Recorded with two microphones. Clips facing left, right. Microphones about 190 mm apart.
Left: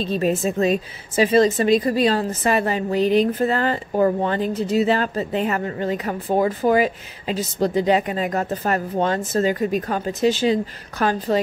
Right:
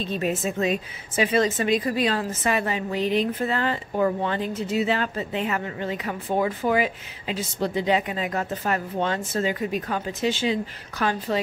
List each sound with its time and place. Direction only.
0.0 s a woman's voice: 35° left (ahead or behind)